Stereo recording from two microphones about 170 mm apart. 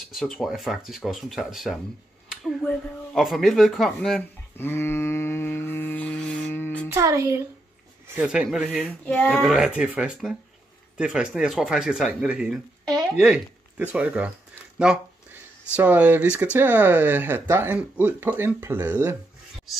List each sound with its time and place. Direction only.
0.1 s speech: centre (ahead or behind)
4.6 s a sound: 15° left (ahead or behind)
6.9 s speech: 15° right (ahead or behind)
8.2 s speech: 5° right (ahead or behind)
8.8 s female singing: 10° left (ahead or behind)
9.4 s speech: centre (ahead or behind)